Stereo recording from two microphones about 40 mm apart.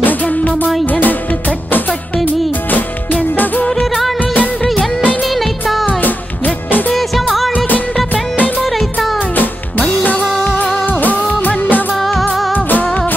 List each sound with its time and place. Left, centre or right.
0.0 s music: left
5.3 s music: centre
6.0 s music: left
6.9 s music: centre
7.5 s music: left
10.4 s music: left
12.0 s music: centre
12.5 s music: left